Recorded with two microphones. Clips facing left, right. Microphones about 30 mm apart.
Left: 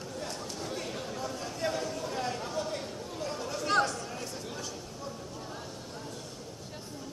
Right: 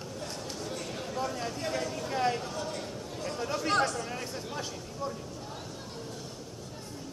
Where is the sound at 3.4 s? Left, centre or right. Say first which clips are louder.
Right 3 dB; centre.